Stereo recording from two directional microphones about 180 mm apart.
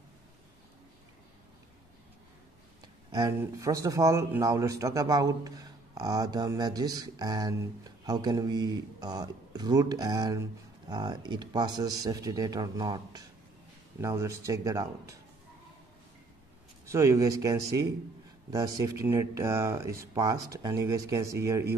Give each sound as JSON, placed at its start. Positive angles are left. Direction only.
{"t": 3.1, "sound": "speech", "side_deg": -20}
{"t": 16.8, "sound": "speech", "side_deg": -15}